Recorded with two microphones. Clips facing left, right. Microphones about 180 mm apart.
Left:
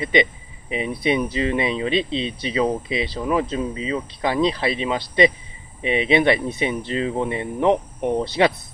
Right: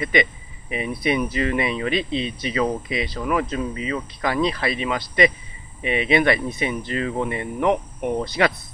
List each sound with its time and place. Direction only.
0.0 s speech: 25° left (ahead or behind)